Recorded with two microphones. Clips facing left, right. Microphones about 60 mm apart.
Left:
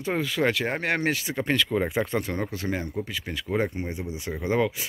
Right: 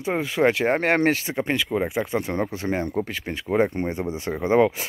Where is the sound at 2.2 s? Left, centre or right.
Right.